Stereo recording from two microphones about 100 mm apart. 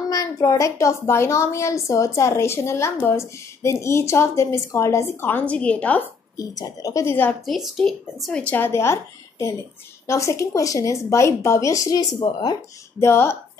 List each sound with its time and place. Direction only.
0.1 s a woman's voice: 35° left (ahead or behind)
5.2 s speech: 15° left (ahead or behind)
6.3 s a woman's voice: 35° left (ahead or behind)
7.4 s a woman's voice: centre (ahead or behind); by 12.5 s 45° left (ahead or behind)
13.0 s a woman's voice: 25° left (ahead or behind)